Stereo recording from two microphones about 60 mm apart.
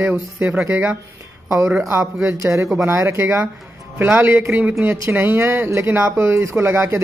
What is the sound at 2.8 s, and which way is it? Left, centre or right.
A man's voice, right.